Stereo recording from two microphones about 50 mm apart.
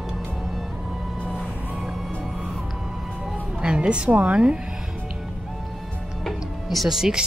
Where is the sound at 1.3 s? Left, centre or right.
Centre.